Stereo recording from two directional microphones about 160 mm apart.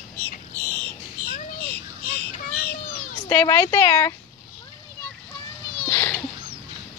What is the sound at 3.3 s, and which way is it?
Speech, 15° left (ahead or behind).